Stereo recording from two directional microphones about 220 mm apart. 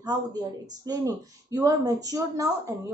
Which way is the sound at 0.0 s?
15° right (ahead or behind).